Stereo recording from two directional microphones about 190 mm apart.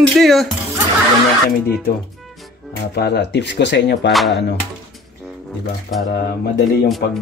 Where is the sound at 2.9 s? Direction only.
60° left (ahead or behind).